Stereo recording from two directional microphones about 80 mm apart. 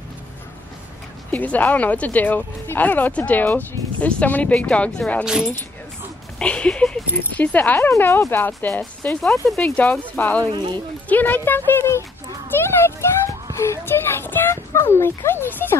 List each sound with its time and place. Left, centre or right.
1.3 s speech: left
5.2 s speech: centre
6.4 s speech: centre
9.2 s speech: centre
9.8 s speech: left
10.5 s speech: right
11.1 s speech: left